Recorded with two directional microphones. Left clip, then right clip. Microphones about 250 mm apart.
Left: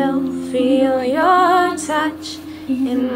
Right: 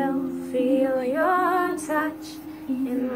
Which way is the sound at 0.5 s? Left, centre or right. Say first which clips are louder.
Left 6 dB; centre.